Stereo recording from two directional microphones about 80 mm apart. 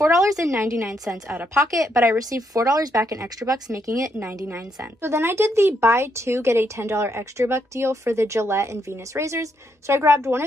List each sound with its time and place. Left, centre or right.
0.0 s a woman's voice: right